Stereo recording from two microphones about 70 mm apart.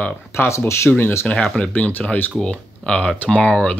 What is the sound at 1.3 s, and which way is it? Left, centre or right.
Speech, centre.